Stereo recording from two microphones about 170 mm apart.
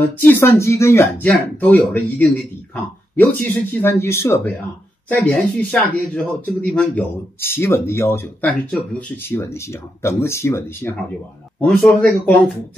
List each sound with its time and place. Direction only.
0.0 s a man's voice: 10° left (ahead or behind)